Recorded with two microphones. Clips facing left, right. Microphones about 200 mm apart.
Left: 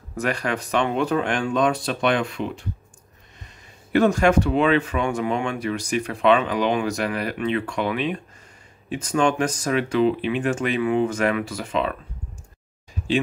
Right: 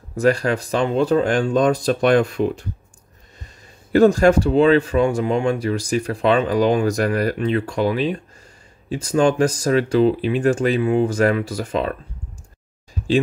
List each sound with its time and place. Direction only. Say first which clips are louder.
0.1 s speech: right 7 dB; 30° right (ahead or behind)
3.9 s speech: right 4 dB; 35° right (ahead or behind)